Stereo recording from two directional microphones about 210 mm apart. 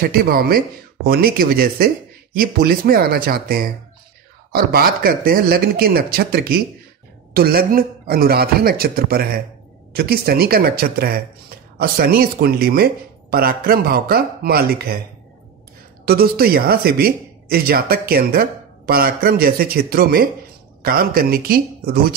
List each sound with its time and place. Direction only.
0.0 s speech: 45° right (ahead or behind)
16.1 s speech: 45° right (ahead or behind)